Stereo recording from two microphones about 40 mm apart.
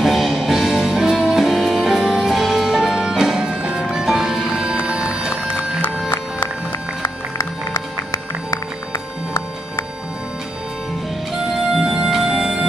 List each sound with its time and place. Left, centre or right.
0.0 s music: centre
4.8 s music: right
6.0 s music: left
11.6 s music: centre